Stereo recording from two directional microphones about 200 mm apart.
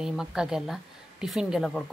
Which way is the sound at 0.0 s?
5° right (ahead or behind).